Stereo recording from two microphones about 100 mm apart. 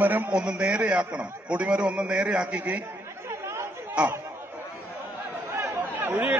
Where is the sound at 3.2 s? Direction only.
25° right (ahead or behind).